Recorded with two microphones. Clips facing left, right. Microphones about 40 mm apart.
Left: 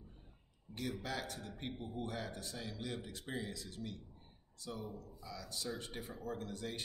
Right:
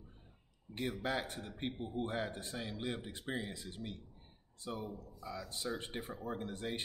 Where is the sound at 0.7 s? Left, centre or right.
Right.